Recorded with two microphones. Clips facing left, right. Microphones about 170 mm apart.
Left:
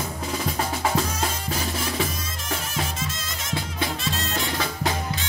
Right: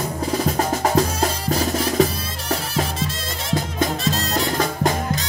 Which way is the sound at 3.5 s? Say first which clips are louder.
Right 6 dB; 40° right (ahead or behind).